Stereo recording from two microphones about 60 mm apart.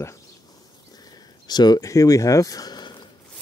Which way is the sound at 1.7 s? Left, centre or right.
Left.